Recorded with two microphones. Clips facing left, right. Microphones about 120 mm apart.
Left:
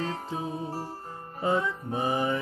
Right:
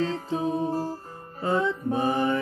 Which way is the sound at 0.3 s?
25° right (ahead or behind).